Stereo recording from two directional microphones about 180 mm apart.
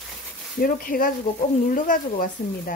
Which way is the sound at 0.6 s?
55° left (ahead or behind).